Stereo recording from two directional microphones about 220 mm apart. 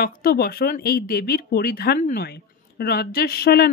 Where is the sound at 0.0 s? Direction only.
40° left (ahead or behind).